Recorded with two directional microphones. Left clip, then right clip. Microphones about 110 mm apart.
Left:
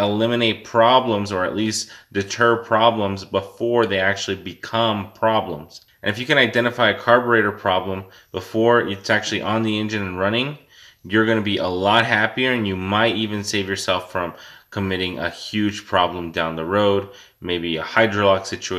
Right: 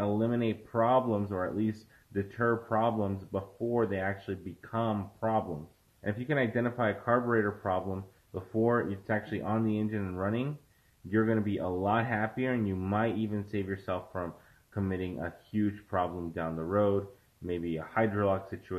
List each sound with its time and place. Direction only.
0.0 s speech: 20° left (ahead or behind)